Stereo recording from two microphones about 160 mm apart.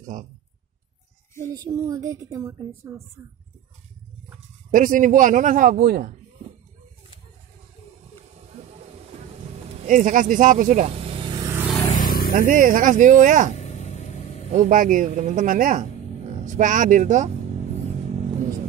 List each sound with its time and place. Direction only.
0.0 s speech: 55° right (ahead or behind)
1.4 s a woman's voice: 25° right (ahead or behind)
4.6 s speech: 55° right (ahead or behind)
9.8 s speech: 55° right (ahead or behind); by 11.5 s 25° right (ahead or behind)
11.9 s vehicle: 60° left (ahead or behind)
12.4 s speech: 60° right (ahead or behind)
13.6 s vehicle: 45° left (ahead or behind)
14.5 s speech: 55° right (ahead or behind)